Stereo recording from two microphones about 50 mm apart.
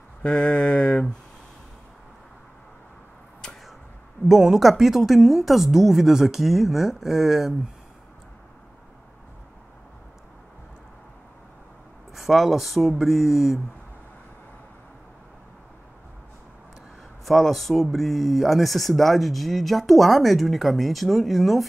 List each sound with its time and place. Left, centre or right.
0.2 s a sound: left
4.3 s speech: centre
12.1 s speech: centre
17.2 s speech: centre